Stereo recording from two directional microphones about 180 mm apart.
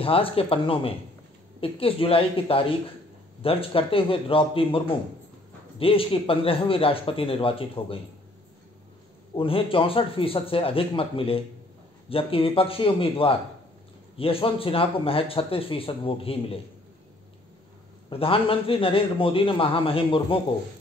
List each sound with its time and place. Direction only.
0.0 s speech: 30° left (ahead or behind)
9.3 s speech: 30° left (ahead or behind)
18.1 s speech: 30° left (ahead or behind)